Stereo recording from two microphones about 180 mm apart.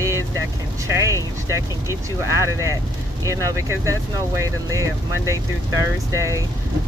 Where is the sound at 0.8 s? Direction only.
15° right (ahead or behind).